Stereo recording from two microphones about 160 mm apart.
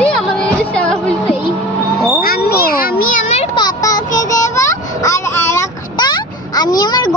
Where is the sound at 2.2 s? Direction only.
75° left (ahead or behind).